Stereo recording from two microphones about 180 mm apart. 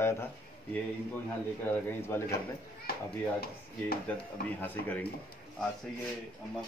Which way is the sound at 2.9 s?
60° left (ahead or behind).